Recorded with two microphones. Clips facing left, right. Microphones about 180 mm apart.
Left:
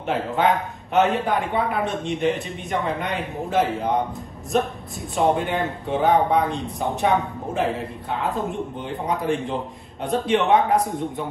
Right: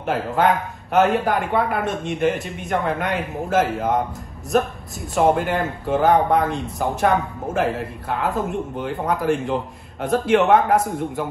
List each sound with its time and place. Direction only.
0.0 s speech: centre (ahead or behind)
5.1 s speech: centre (ahead or behind)